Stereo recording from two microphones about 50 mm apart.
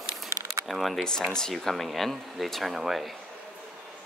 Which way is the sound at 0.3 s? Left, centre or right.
Right.